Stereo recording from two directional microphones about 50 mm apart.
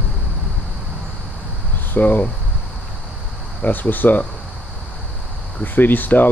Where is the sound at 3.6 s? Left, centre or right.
Left.